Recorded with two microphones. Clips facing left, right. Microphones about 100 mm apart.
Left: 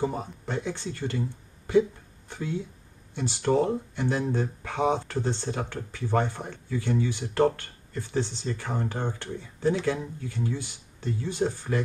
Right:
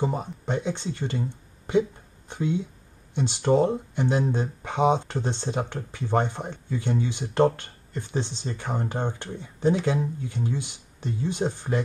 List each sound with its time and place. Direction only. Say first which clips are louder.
0.0 s speech: right 2 dB; 20° right (ahead or behind)